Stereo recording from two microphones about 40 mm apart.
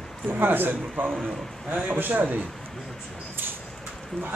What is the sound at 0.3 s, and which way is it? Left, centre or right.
A man's voice, right.